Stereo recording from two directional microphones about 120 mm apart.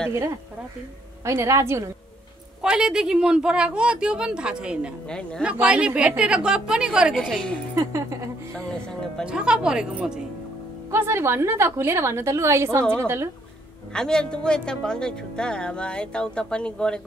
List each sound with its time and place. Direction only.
1.2 s a woman's voice: 25° right (ahead or behind)
2.6 s speech: 5° right (ahead or behind)
5.0 s speech: 5° left (ahead or behind)
5.4 s speech: 10° right (ahead or behind)
7.2 s a woman's voice: 5° left (ahead or behind)
7.7 s a woman's voice: 25° right (ahead or behind)
8.5 s speech: 5° left (ahead or behind)
9.2 s speech: 5° right (ahead or behind)
10.9 s a woman's voice: 20° right (ahead or behind)
13.9 s speech: 5° left (ahead or behind)